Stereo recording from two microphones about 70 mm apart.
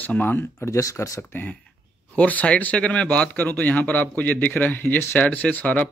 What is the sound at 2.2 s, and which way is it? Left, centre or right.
Speech, centre.